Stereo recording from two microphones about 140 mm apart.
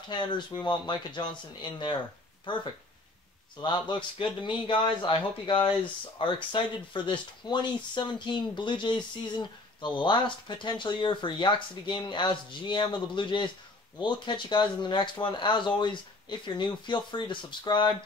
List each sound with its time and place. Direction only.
0.1 s speech: 30° left (ahead or behind)
3.6 s speech: 35° left (ahead or behind)